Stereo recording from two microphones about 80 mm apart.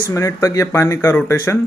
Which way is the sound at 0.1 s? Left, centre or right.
Left.